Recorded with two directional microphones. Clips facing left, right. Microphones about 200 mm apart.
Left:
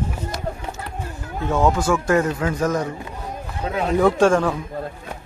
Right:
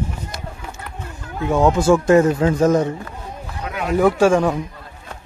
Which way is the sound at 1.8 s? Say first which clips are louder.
Right 6 dB; 25° right (ahead or behind).